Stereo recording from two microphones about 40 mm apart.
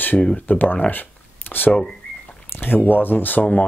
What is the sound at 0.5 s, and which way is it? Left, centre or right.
Speech, left.